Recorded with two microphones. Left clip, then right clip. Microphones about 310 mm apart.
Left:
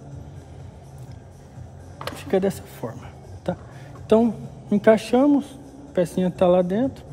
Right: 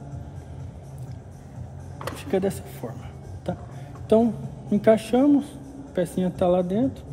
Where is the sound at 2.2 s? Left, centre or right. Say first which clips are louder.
Left 3 dB; left.